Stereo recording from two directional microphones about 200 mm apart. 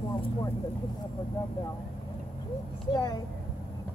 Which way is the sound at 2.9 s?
20° left (ahead or behind).